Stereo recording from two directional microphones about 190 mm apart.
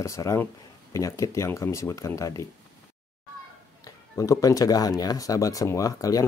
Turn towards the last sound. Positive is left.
turn(degrees=20)  # may be behind; listen again after turning